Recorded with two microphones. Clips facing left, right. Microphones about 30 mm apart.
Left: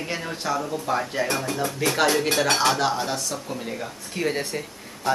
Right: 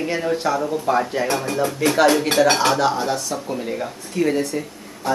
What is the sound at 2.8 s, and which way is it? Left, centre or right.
Speech, centre.